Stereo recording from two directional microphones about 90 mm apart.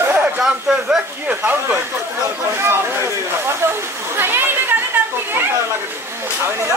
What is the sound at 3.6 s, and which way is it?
Speech, 30° right (ahead or behind).